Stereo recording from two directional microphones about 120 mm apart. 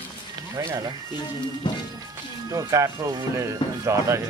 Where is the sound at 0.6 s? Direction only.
35° right (ahead or behind).